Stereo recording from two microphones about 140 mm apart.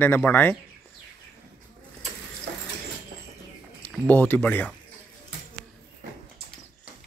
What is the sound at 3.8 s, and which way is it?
Speech, 10° left (ahead or behind).